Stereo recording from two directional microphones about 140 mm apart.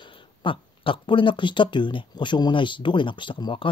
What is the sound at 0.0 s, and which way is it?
Speech, 35° left (ahead or behind).